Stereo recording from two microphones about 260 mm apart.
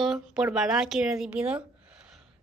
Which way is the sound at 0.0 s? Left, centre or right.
Centre.